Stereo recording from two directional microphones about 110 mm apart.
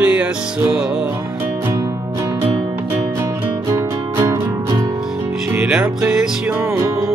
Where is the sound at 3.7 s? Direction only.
25° right (ahead or behind).